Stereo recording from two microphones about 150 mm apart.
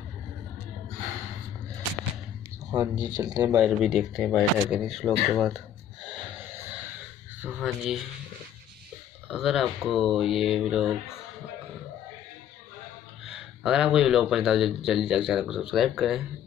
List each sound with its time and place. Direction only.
2.7 s speech: 25° right (ahead or behind)
3.4 s speech: 10° right (ahead or behind)
6.0 s a sound: 10° right (ahead or behind)
7.6 s speech: 5° right (ahead or behind)
9.3 s speech: centre (ahead or behind)
13.2 s speech: 5° right (ahead or behind)